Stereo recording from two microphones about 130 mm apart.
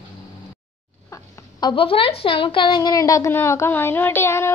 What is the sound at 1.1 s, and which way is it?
A woman's voice, 35° left (ahead or behind).